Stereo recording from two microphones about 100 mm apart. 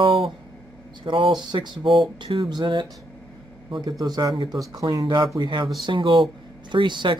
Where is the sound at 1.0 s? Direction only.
55° right (ahead or behind).